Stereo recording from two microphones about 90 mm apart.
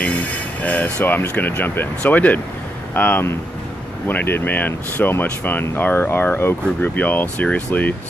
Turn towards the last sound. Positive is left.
turn(degrees=20)  # may be behind; listen again after turning